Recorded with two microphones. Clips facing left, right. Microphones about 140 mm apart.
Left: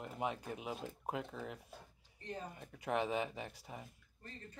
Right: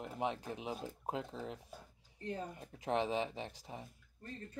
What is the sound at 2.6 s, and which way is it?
Speech, 30° right (ahead or behind).